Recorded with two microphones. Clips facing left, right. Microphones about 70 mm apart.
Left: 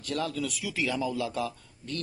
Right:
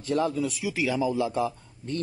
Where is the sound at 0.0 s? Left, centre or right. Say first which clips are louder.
Right 6 dB; right.